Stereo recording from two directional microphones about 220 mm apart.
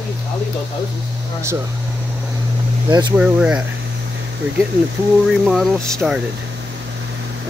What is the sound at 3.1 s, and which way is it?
Speech, 5° right (ahead or behind).